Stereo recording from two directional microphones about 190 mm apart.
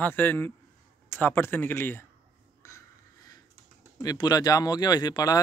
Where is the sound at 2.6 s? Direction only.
15° left (ahead or behind).